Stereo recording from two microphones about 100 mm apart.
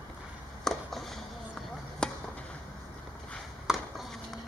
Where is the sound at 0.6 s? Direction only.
5° left (ahead or behind).